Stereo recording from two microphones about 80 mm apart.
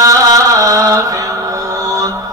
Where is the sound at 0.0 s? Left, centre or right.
Right.